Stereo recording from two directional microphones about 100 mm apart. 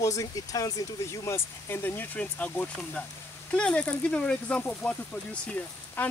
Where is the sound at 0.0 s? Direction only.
35° left (ahead or behind).